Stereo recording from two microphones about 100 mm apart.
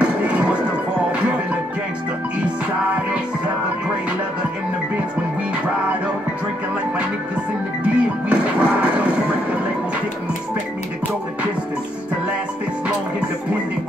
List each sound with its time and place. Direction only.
0.0 s music: 10° right (ahead or behind)
7.8 s music: 10° right (ahead or behind)